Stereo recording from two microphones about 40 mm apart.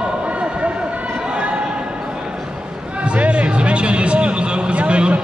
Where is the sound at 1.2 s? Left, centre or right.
Right.